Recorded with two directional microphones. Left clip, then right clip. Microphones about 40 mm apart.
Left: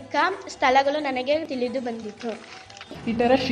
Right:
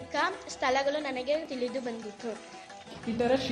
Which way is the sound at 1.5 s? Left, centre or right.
Left.